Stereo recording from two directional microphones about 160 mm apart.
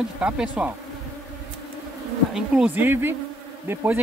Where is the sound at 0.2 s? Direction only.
10° right (ahead or behind).